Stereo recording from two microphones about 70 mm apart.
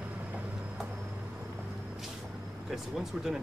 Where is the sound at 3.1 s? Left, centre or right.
Centre.